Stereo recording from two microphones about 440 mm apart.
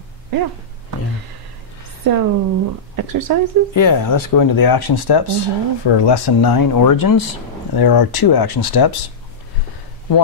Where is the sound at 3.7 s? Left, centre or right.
Left.